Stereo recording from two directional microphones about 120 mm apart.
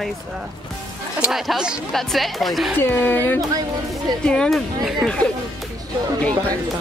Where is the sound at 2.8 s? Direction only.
15° left (ahead or behind); by 5.1 s 5° right (ahead or behind).